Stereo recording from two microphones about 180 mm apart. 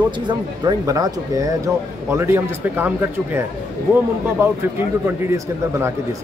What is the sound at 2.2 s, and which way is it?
Speech, 10° right (ahead or behind).